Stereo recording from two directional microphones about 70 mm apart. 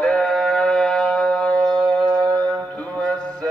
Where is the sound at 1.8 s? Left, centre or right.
Right.